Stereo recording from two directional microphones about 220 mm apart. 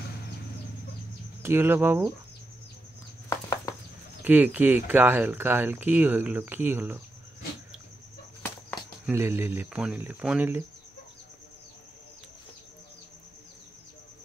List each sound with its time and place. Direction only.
1.4 s speech: 10° right (ahead or behind)
3.3 s a sound: 15° left (ahead or behind)
4.2 s speech: 10° right (ahead or behind)
8.4 s bird flight: 5° left (ahead or behind)
9.1 s speech: 10° right (ahead or behind)